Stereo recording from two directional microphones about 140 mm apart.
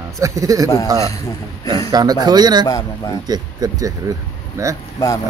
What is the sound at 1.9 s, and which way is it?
Speech, 30° right (ahead or behind).